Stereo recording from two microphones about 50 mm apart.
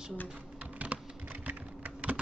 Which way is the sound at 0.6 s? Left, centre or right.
Right.